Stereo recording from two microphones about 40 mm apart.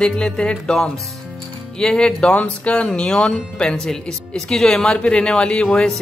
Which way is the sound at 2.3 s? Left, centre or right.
Left.